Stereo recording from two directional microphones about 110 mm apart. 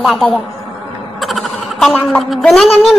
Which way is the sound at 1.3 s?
Centre (ahead or behind).